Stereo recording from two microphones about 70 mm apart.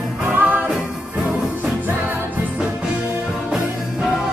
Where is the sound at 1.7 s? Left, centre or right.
Right.